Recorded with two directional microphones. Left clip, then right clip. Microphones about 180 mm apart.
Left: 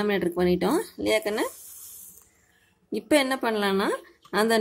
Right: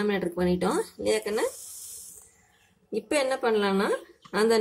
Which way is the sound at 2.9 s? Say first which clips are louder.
Left 3 dB; 30° left (ahead or behind).